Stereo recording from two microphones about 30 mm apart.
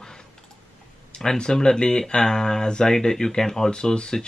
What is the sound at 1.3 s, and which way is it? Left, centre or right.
Speech, left.